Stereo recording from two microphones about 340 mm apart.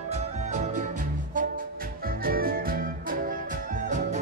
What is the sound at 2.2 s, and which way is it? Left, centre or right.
Music, right.